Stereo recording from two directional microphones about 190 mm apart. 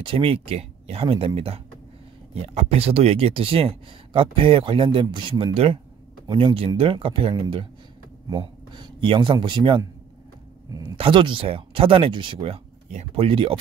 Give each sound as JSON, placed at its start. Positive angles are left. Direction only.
{"t": 0.0, "sound": "speech", "side_deg": -30}
{"t": 11.0, "sound": "speech", "side_deg": -25}